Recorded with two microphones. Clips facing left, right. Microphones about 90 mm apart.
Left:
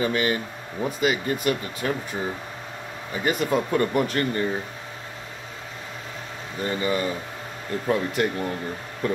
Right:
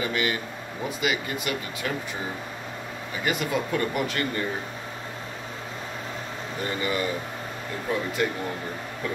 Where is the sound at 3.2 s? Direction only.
35° left (ahead or behind).